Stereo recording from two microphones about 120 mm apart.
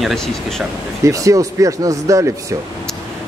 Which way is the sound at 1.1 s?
25° right (ahead or behind).